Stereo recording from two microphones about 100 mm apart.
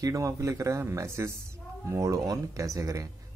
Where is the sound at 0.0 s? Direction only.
35° right (ahead or behind).